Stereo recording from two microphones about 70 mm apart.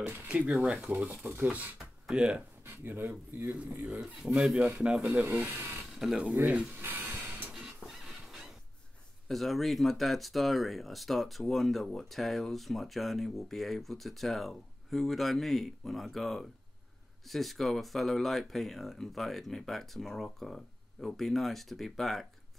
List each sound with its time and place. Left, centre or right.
0.3 s speech: centre
2.0 s speech: centre
2.6 s speech: right
3.4 s speech: centre
4.6 s speech: centre
5.4 s speech: right
5.9 s speech: centre
6.4 s speech: centre
6.9 s a sound: right
7.5 s a sound: centre
9.3 s speech: centre